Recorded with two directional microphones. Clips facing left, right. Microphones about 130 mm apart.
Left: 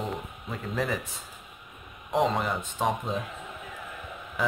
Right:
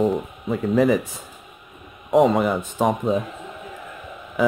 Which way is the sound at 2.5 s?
40° right (ahead or behind).